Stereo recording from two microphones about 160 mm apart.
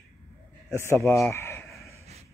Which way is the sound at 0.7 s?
15° left (ahead or behind).